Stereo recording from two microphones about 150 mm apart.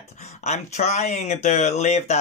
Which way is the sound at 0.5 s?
50° left (ahead or behind).